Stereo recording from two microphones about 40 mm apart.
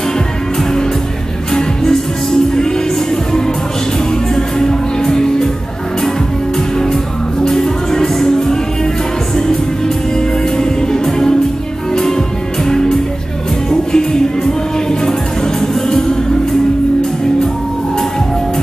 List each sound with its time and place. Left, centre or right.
4.4 s music: centre
7.4 s music: centre
10.6 s music: centre
12.6 s music: centre